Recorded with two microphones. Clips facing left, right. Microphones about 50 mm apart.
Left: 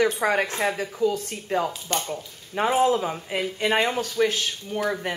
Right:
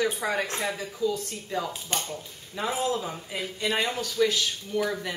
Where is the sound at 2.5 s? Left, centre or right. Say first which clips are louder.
Left 7 dB; left.